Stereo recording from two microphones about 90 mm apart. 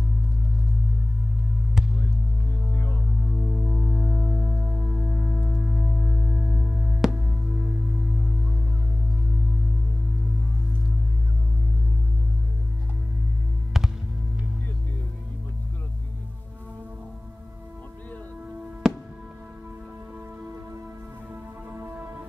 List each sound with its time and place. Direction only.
1.8 s music: 5° right (ahead or behind)
3.3 s music: 20° right (ahead or behind)
13.7 s music: 5° right (ahead or behind)
18.8 s music: 5° right (ahead or behind)
21.7 s music: 25° right (ahead or behind)